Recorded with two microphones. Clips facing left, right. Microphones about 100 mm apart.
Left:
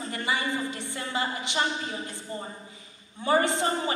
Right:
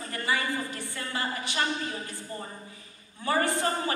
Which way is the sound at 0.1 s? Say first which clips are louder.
Even; 20° left (ahead or behind).